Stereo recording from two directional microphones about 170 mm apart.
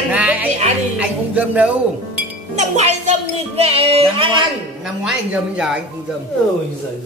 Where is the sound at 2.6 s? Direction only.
40° right (ahead or behind).